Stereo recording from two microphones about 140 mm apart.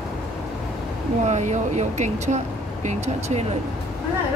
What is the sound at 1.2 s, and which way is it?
Speech, 55° right (ahead or behind).